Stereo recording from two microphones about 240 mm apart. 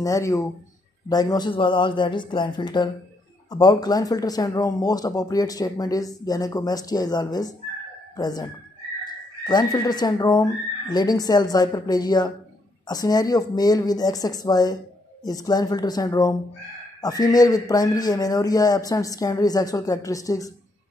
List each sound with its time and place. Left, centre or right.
0.0 s speech: centre
9.5 s speech: centre